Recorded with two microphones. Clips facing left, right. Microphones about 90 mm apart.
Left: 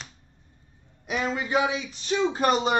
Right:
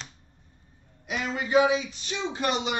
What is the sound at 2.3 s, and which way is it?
Speech, 40° left (ahead or behind).